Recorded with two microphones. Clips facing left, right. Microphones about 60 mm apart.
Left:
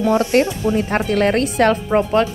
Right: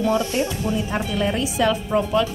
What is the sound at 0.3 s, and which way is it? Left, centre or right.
A woman's voice, left.